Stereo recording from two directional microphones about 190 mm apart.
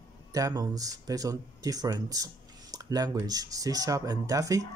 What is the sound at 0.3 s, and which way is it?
Speech, 20° right (ahead or behind).